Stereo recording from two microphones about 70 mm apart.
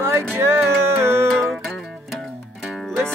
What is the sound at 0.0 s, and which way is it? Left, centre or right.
Music, right.